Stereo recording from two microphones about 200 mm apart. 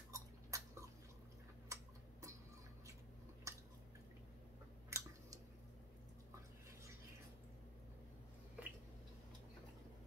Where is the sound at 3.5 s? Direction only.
15° right (ahead or behind).